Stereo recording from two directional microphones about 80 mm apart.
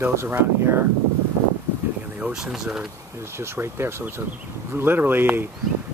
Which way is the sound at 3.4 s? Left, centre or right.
Right.